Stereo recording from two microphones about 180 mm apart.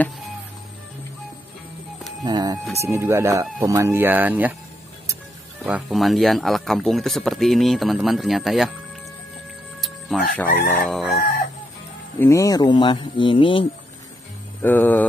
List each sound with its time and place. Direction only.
2.2 s speech: 20° right (ahead or behind)
5.7 s speech: 5° right (ahead or behind)
9.8 s music: centre (ahead or behind)
10.7 s speech: centre (ahead or behind)
12.2 s speech: 15° left (ahead or behind)
14.6 s music: 10° left (ahead or behind)